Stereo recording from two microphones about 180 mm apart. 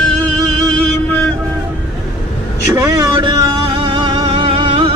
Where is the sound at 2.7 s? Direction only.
20° right (ahead or behind).